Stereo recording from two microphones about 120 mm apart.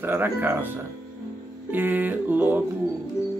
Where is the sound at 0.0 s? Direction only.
20° right (ahead or behind).